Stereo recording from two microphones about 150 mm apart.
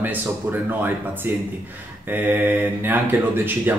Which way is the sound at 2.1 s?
10° right (ahead or behind).